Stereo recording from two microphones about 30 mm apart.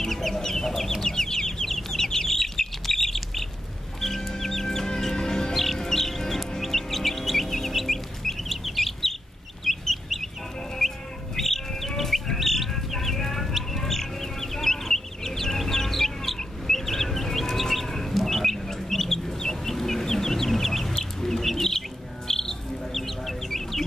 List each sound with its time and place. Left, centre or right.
0.0 s chicken: centre
1.7 s bird: centre
4.0 s chicken: centre
5.5 s music: centre
6.6 s bird: centre
9.7 s chicken: centre
10.8 s chicken: centre
11.3 s bird: centre
13.5 s chicken: centre
21.5 s bird: centre
22.3 s music: centre
22.9 s chicken: centre